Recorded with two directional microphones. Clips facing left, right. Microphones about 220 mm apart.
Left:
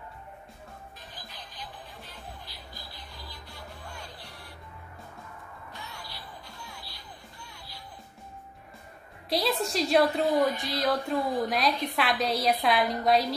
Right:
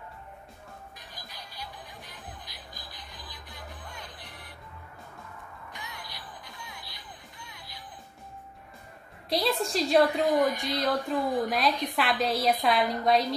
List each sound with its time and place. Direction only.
1.1 s music: 10° right (ahead or behind)
5.7 s music: 15° right (ahead or behind)
9.3 s a woman's voice: centre (ahead or behind)